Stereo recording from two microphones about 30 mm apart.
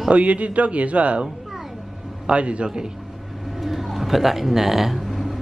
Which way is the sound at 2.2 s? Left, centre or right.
Right.